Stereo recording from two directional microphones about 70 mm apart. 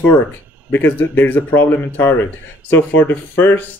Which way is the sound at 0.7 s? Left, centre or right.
Left.